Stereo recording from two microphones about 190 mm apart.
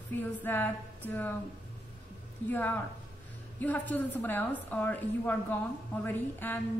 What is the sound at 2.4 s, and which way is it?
A woman's voice, 10° left (ahead or behind).